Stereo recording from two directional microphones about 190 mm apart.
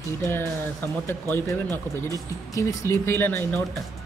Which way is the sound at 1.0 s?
10° left (ahead or behind).